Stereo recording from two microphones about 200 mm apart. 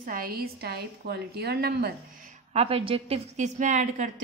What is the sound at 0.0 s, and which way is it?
A woman's voice, 45° right (ahead or behind).